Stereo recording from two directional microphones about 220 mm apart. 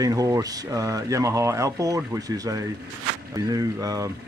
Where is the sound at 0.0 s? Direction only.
15° right (ahead or behind).